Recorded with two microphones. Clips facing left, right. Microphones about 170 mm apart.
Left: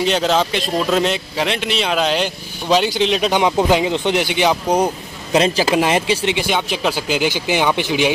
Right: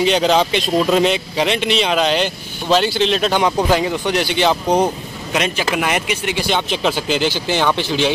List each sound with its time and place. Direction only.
0.0 s speech: centre (ahead or behind)
5.3 s speech: 30° left (ahead or behind)
6.3 s speech: 10° left (ahead or behind)